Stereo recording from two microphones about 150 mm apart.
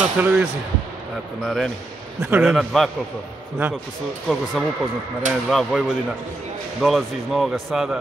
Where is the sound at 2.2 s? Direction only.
10° right (ahead or behind).